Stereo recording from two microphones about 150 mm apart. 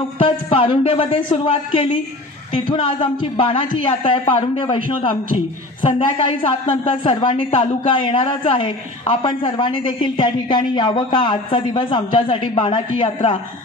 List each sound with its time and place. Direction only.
0.2 s a woman's voice: 35° left (ahead or behind)
5.9 s a woman's voice: 35° left (ahead or behind)